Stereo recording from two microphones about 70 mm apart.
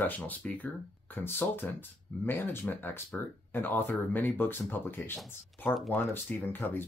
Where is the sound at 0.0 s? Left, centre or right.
Left.